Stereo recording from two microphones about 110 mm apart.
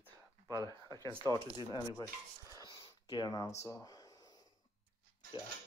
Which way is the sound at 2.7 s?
35° left (ahead or behind).